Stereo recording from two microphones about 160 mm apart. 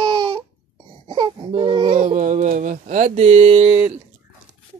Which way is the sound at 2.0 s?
50° right (ahead or behind).